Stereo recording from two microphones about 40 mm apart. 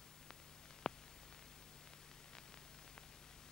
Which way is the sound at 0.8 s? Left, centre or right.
Centre.